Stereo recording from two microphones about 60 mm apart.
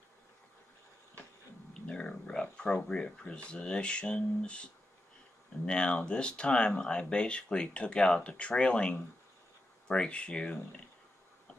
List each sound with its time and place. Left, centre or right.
1.7 s speech: centre
5.7 s speech: centre